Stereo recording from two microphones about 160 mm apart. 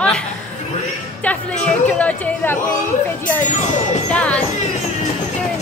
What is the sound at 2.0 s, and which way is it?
Speech, 10° left (ahead or behind).